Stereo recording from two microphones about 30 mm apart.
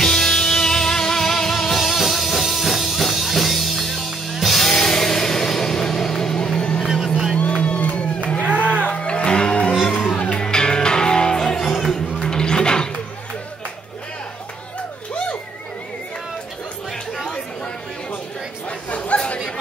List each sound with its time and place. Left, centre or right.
0.0 s music: centre
4.6 s music: centre
6.8 s vehicle: centre
7.3 s a sound: left
8.4 s music: right
8.9 s music: left
10.4 s music: left
11.5 s music: centre
12.2 s a sound: left
18.9 s chatter: left